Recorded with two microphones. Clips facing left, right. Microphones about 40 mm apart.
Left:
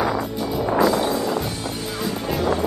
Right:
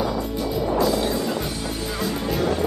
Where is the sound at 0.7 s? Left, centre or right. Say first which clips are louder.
Left 3 dB; left.